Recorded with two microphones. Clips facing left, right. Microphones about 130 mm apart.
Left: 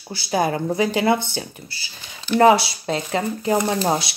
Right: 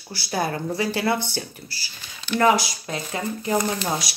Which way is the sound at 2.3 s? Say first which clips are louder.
Left 5 dB; 30° left (ahead or behind).